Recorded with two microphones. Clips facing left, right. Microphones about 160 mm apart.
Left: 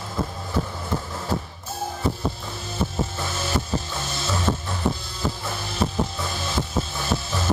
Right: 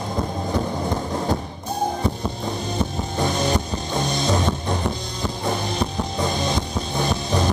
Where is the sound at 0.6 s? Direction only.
15° right (ahead or behind).